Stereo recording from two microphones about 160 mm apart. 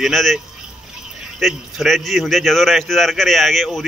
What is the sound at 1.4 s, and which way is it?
A man's voice, centre (ahead or behind).